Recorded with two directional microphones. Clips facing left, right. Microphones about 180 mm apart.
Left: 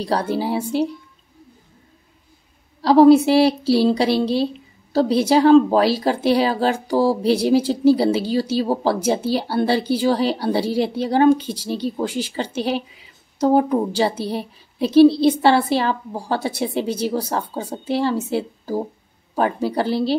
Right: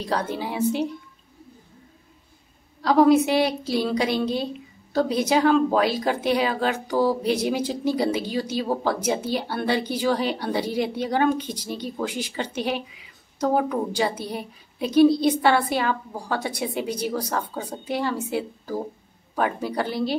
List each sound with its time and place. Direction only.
0.0 s a woman's voice: 35° left (ahead or behind)
2.8 s a woman's voice: 30° left (ahead or behind)